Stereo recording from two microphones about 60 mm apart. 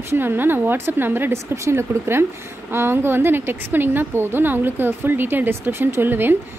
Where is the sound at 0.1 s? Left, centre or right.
Right.